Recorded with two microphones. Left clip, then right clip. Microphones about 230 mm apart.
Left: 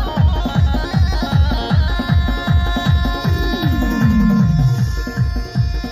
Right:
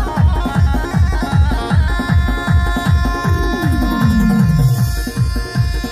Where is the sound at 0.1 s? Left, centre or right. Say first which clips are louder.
Right 1 dB; left.